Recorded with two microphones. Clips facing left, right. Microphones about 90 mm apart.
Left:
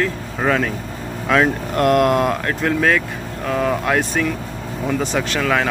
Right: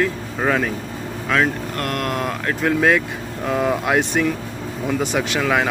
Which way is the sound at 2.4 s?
10° right (ahead or behind).